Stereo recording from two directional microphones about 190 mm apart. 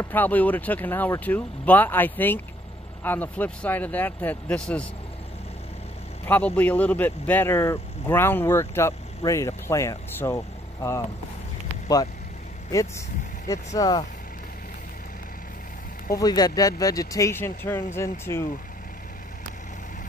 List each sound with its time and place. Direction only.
0.0 s speech: 10° left (ahead or behind)
6.2 s speech: 10° left (ahead or behind)
13.7 s speech: 20° left (ahead or behind)
16.2 s speech: 20° left (ahead or behind)